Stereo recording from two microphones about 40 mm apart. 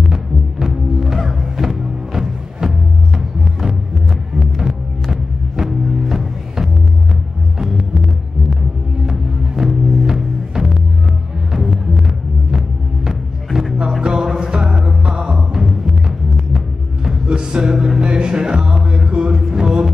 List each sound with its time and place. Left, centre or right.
0.0 s music: centre
0.9 s music: centre
4.4 s music: centre
9.0 s music: centre
18.0 s a sound: right
19.0 s music: right